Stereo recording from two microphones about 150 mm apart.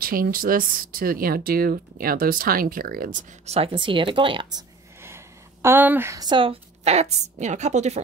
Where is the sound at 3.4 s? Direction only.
40° right (ahead or behind).